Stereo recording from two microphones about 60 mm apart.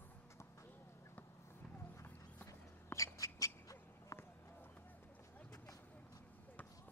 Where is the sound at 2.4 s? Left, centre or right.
Left.